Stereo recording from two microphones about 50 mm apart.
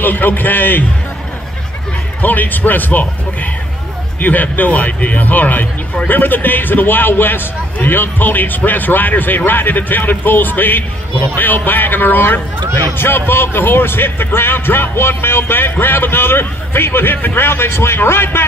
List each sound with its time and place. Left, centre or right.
0.0 s a man's voice: left
2.2 s a man's voice: left